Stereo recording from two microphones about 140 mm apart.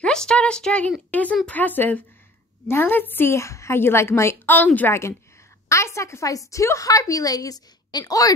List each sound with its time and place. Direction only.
0.0 s a woman's voice: 5° left (ahead or behind); by 8.3 s 25° left (ahead or behind)